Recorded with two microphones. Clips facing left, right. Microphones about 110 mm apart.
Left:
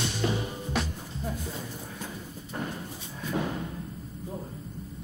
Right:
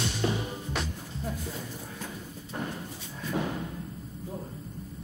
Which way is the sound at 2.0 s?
Centre (ahead or behind).